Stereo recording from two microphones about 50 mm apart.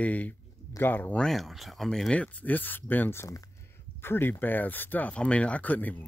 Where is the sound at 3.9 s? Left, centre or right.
Left.